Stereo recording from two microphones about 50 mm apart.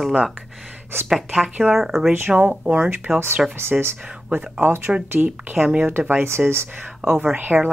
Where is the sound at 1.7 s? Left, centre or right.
Centre.